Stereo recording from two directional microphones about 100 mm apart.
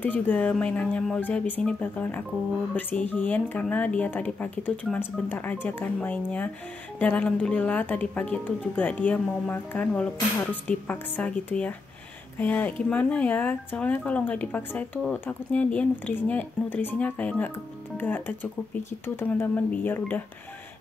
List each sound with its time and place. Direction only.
0.0 s speech: 15° left (ahead or behind)